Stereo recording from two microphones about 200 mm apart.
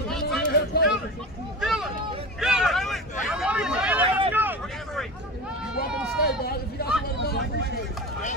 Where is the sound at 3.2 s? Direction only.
5° right (ahead or behind).